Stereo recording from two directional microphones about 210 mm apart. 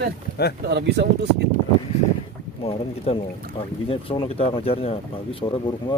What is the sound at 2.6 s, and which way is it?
Speech, 25° left (ahead or behind).